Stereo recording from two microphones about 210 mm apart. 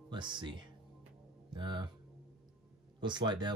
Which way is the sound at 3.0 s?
20° right (ahead or behind).